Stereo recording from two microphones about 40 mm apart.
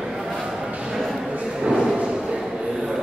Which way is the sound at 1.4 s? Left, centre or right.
Centre.